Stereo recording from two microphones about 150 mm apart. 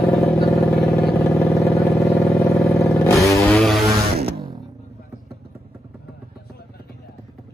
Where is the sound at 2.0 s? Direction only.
20° left (ahead or behind).